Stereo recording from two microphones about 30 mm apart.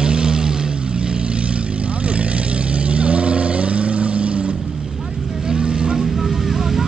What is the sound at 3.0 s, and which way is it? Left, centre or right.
Vehicle, right.